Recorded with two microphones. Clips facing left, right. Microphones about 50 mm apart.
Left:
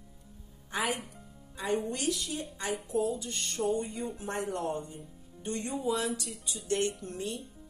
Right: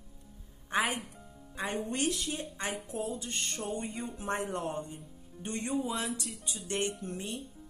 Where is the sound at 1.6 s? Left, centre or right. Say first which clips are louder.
Left 1 dB; right.